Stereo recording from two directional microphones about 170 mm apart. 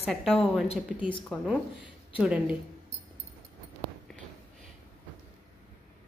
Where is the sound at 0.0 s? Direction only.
Centre (ahead or behind).